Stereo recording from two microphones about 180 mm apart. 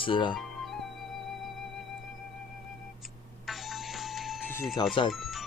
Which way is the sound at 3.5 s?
Centre (ahead or behind).